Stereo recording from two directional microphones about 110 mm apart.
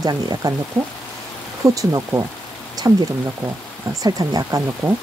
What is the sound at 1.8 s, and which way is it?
Speech, 30° right (ahead or behind).